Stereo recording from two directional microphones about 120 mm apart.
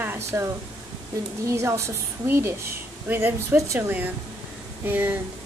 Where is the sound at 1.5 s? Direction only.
25° right (ahead or behind).